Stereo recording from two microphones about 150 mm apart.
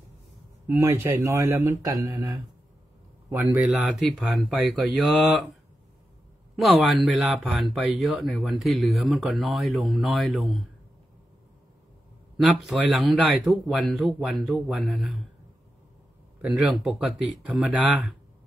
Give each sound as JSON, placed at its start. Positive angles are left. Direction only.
{"t": 0.7, "sound": "speech", "side_deg": -20}
{"t": 3.3, "sound": "speech", "side_deg": -15}
{"t": 6.5, "sound": "speech", "side_deg": 0}
{"t": 12.4, "sound": "speech", "side_deg": -5}
{"t": 16.3, "sound": "speech", "side_deg": -5}